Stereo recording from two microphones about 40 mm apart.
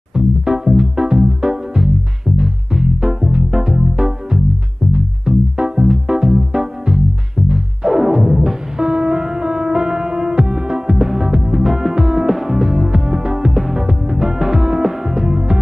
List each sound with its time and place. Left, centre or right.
0.1 s music: centre